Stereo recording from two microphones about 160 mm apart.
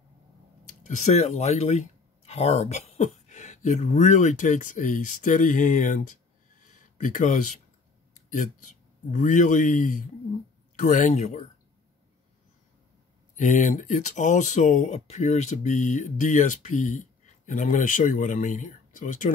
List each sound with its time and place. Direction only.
0.8 s speech: 45° left (ahead or behind)
6.6 s a sound: 55° left (ahead or behind)
8.1 s speech: 55° left (ahead or behind)
13.4 s speech: 55° left (ahead or behind)